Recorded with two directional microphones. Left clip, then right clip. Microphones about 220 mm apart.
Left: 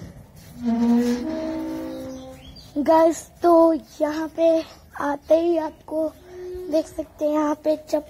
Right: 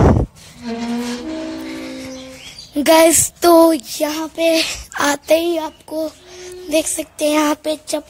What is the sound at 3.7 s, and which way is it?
A woman's voice, 40° right (ahead or behind).